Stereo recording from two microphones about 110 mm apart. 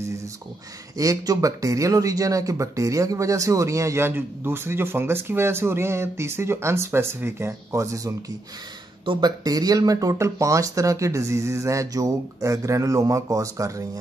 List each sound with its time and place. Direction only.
0.9 s speech: 35° right (ahead or behind)
9.0 s speech: 50° right (ahead or behind)
9.4 s speech: 35° right (ahead or behind)